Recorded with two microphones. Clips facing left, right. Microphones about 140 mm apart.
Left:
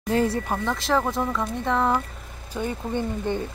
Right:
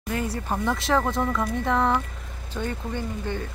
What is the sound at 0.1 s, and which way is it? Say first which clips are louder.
Speech: left 6 dB; 30° left (ahead or behind).